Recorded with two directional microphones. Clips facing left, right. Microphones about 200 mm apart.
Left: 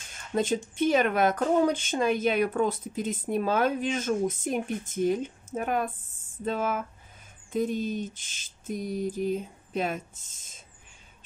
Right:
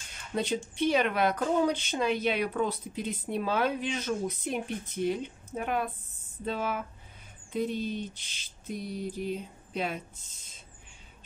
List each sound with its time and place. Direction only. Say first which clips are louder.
0.3 s speech: left 4 dB; 45° left (ahead or behind)